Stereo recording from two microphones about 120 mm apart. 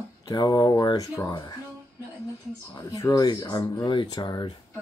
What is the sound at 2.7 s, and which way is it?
Speech, 30° left (ahead or behind).